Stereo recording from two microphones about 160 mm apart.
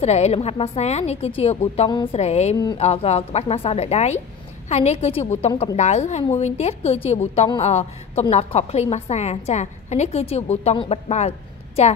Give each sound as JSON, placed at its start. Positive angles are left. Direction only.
{"t": 0.0, "sound": "a woman's voice", "side_deg": 40}